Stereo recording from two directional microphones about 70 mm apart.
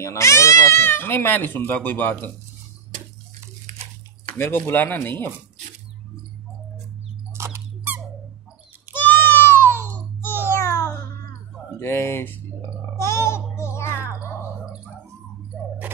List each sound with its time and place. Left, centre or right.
0.0 s speech: left
4.4 s speech: left
7.3 s squeak: right
9.0 s a sound: left
11.8 s speech: left
12.6 s gargling: left
15.5 s a sound: centre